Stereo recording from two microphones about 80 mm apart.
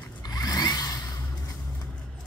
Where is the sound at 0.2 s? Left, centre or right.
Left.